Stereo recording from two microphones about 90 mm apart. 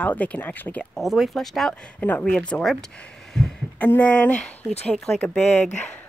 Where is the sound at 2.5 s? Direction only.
5° left (ahead or behind).